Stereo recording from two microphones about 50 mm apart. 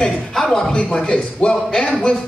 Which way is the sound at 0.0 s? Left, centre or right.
Centre.